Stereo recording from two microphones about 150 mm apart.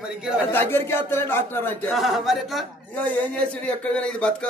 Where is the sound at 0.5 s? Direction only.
15° left (ahead or behind).